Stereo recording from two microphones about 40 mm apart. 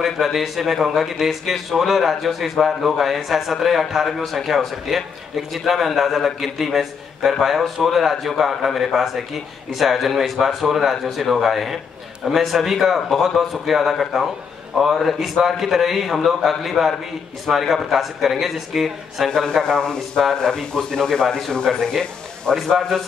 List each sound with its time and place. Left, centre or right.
0.0 s a man's voice: centre
19.3 s speech: centre